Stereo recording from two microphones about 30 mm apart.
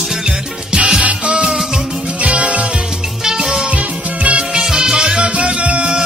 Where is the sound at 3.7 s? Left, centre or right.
Right.